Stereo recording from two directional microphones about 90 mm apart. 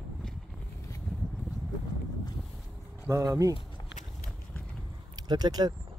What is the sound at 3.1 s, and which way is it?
Speech, 35° right (ahead or behind).